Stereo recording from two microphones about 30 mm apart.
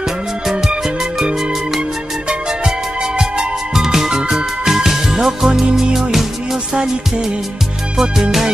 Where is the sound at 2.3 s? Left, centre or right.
Centre.